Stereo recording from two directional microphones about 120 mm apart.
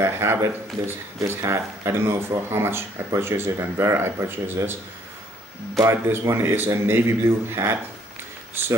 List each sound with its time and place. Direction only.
0.0 s speech: 20° right (ahead or behind)
5.8 s speech: 25° right (ahead or behind)